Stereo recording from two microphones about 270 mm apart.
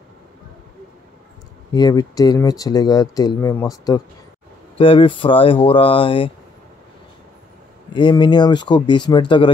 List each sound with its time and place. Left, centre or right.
1.7 s speech: centre
7.9 s speech: centre